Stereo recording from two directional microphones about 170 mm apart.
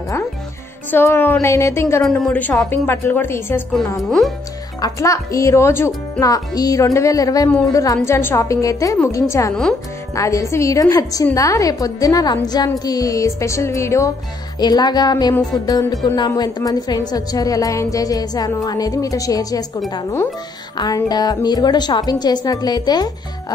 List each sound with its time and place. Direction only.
0.8 s a woman's voice: 15° left (ahead or behind)
4.7 s a woman's voice: 20° left (ahead or behind)